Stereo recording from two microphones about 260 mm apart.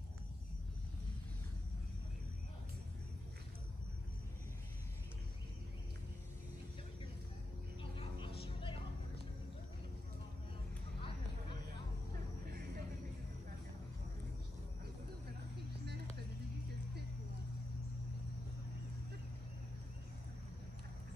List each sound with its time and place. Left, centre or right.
7.8 s vehicle: centre